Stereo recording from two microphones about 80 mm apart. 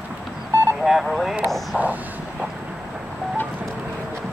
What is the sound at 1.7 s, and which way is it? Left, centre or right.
Speech, centre.